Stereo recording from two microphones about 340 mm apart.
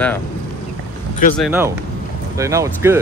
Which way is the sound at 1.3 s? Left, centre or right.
Centre.